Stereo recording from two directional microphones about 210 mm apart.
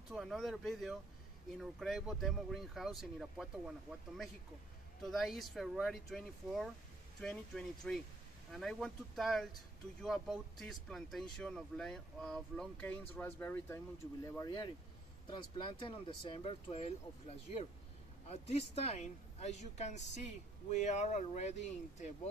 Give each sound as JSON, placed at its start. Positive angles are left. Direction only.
{"t": 0.1, "sound": "speech", "side_deg": 0}
{"t": 5.0, "sound": "speech", "side_deg": 0}